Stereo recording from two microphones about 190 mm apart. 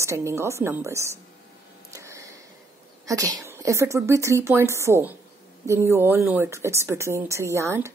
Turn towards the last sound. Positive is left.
turn(degrees=-15)  # may be behind; listen again after turning